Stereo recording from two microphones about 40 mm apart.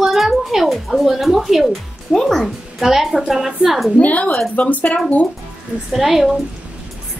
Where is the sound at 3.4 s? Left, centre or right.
Centre.